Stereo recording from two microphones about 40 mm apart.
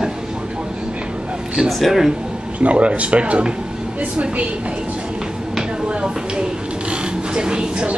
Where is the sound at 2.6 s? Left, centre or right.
Right.